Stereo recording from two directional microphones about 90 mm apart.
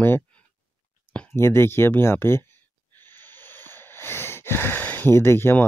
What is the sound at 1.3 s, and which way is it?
Speech, 25° left (ahead or behind).